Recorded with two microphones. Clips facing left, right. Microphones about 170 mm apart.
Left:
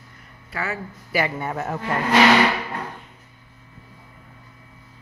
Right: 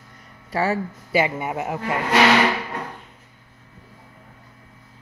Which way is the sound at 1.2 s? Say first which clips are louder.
Right 1 dB; 15° right (ahead or behind).